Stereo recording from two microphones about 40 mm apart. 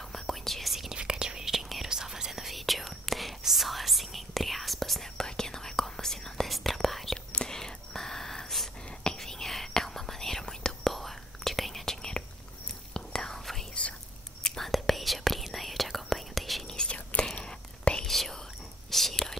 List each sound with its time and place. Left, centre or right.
0.1 s whispering: centre
0.9 s whispering: centre
1.5 s whispering: centre
6.4 s whispering: centre
7.3 s whispering: centre
10.4 s whispering: centre
10.9 s whispering: centre
11.8 s whispering: centre
14.6 s whispering: centre
16.6 s whispering: left
18.0 s whispering: centre